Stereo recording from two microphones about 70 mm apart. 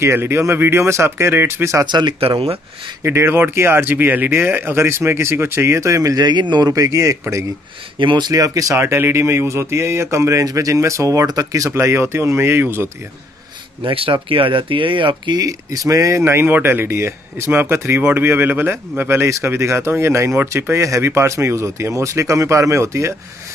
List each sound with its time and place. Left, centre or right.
0.0 s speech: right
1.9 s a man's voice: right
3.0 s speech: right
6.2 s a man's voice: right
6.7 s speech: right
8.2 s speech: right
8.8 s speech: right
11.7 s speech: right
15.4 s speech: right